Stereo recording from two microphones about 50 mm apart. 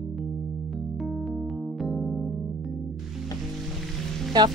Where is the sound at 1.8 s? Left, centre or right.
Centre.